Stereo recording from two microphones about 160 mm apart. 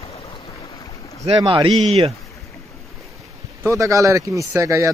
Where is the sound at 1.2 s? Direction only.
30° right (ahead or behind).